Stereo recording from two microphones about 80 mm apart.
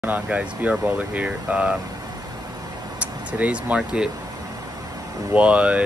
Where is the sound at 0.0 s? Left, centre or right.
Centre.